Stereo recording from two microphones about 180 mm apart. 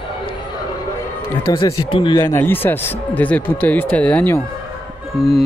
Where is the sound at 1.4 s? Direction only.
25° left (ahead or behind); by 5.4 s centre (ahead or behind).